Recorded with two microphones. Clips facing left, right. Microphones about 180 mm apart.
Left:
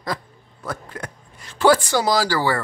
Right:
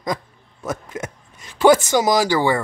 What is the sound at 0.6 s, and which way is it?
Speech, 20° right (ahead or behind).